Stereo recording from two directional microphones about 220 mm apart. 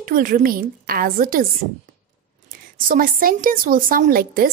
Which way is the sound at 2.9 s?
40° right (ahead or behind).